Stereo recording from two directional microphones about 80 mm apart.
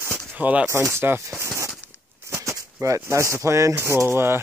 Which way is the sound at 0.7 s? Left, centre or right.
Right.